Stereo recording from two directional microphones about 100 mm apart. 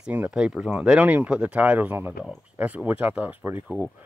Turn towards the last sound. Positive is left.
turn(degrees=-10)  # may be behind; listen again after turning